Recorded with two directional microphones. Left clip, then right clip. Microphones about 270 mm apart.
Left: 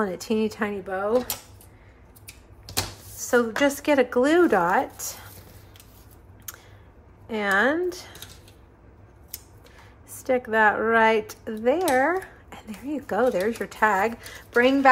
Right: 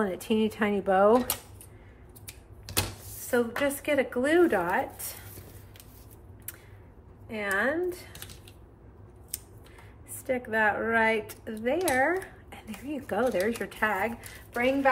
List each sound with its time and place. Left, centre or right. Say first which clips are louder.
0.0 s a woman's voice: left 2 dB; centre
3.3 s speech: left 6 dB; centre
7.2 s speech: left 6 dB; centre
10.2 s speech: left 6 dB; centre
14.5 s a woman's voice: left 7 dB; left